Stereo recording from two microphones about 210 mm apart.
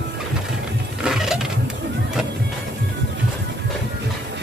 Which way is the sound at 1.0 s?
5° right (ahead or behind).